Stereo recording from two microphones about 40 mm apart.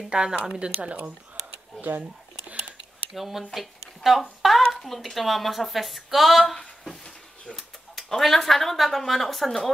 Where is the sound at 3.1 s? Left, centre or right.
Centre.